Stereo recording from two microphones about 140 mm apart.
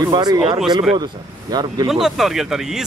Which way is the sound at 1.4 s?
30° right (ahead or behind).